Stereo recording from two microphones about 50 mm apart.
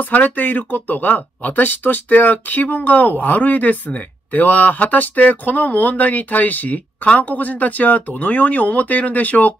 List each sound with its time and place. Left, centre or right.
0.0 s speech: left